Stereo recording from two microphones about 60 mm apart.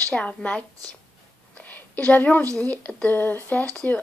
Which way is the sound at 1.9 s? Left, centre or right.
Left.